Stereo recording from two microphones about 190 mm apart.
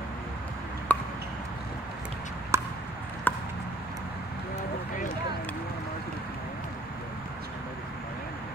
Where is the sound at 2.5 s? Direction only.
15° right (ahead or behind).